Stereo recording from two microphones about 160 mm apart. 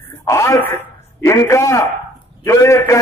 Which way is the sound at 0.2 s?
20° left (ahead or behind).